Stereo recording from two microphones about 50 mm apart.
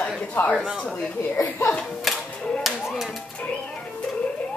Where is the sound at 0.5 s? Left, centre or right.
Centre.